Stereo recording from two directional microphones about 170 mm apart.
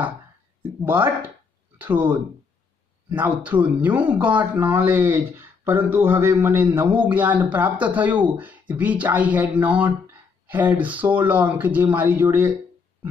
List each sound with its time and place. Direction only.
0.8 s speech: 10° right (ahead or behind)